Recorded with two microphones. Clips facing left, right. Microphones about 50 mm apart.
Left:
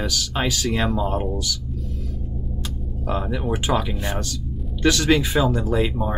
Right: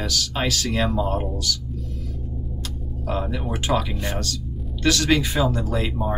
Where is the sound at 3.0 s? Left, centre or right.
Centre.